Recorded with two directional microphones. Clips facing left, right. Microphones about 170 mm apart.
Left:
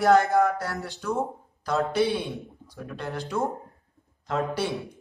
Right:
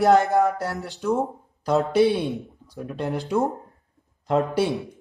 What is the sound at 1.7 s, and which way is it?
Speech, centre (ahead or behind).